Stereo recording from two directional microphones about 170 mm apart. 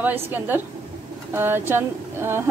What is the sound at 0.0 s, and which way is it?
Speech, 10° right (ahead or behind).